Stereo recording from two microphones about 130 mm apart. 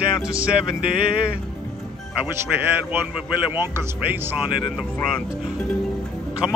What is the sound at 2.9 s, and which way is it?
Speech, 10° right (ahead or behind).